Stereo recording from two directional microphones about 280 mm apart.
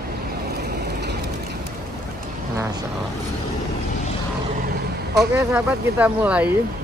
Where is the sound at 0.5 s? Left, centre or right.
Right.